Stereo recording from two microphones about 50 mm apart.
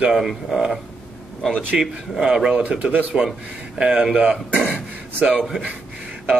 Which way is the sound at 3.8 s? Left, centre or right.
Centre.